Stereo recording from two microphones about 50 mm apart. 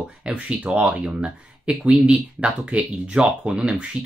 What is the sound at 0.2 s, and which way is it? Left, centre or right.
Speech, right.